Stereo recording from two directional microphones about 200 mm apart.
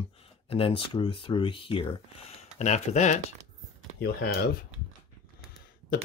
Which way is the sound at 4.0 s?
55° left (ahead or behind).